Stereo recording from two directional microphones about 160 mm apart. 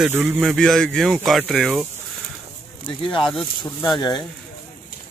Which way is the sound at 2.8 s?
30° left (ahead or behind).